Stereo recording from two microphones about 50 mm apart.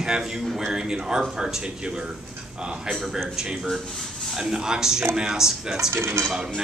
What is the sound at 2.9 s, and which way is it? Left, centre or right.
Speech, centre.